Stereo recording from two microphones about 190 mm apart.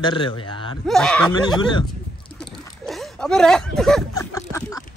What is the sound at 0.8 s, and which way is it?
Speech, 5° left (ahead or behind).